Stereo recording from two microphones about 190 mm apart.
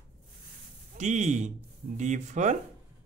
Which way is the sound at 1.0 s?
40° right (ahead or behind).